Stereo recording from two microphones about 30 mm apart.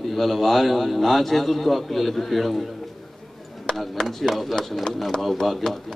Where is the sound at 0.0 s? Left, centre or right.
Centre.